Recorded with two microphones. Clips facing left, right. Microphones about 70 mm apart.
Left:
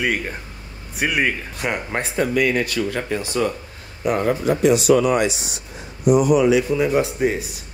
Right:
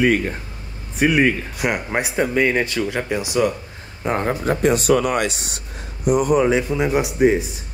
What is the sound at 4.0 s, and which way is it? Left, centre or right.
Speech, right.